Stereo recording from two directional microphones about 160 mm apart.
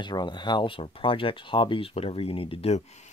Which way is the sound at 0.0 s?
25° left (ahead or behind).